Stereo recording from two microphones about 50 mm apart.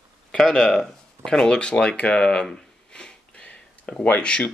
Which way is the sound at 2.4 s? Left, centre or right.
Centre.